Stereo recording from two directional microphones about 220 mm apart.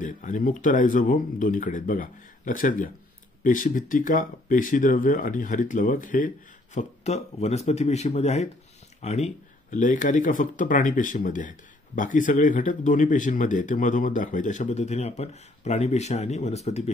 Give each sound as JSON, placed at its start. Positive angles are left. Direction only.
{"t": 0.0, "sound": "speech", "side_deg": 35}